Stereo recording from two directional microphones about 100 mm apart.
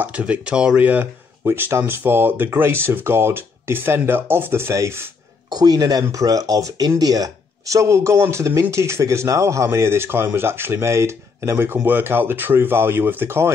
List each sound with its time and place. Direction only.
0.0 s speech: 10° right (ahead or behind)
5.5 s speech: 40° right (ahead or behind); by 13.5 s 25° right (ahead or behind)